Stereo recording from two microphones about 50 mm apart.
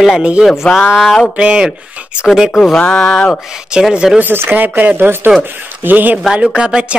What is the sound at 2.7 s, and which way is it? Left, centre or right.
Speech, centre.